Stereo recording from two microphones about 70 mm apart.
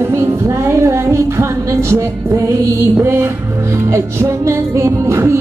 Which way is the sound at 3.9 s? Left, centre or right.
Right.